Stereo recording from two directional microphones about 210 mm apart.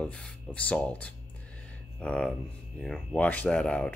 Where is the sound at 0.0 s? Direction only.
5° left (ahead or behind).